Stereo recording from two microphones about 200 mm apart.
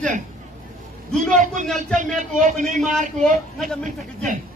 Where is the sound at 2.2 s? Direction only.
40° right (ahead or behind).